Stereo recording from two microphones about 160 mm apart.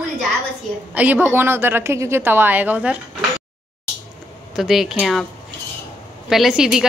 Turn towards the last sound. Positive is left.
turn(degrees=-5)  # may be behind; listen again after turning